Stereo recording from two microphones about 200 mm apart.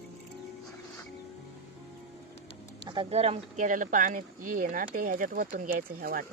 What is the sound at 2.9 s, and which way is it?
Speech, 25° right (ahead or behind).